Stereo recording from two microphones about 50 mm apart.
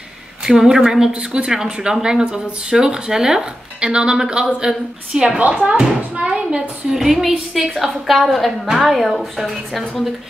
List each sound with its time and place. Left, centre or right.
0.5 s a woman's voice: centre
6.9 s a woman's voice: centre